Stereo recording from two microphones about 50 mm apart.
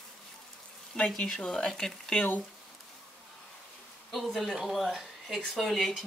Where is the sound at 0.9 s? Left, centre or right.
Centre.